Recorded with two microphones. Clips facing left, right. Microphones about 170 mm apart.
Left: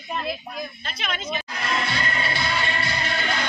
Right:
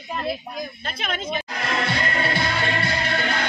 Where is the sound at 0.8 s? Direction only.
50° right (ahead or behind).